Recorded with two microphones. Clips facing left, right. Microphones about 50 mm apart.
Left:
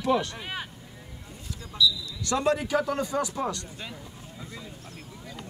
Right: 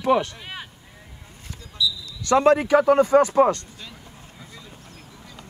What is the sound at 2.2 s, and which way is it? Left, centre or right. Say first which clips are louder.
Speech: right 9 dB; right.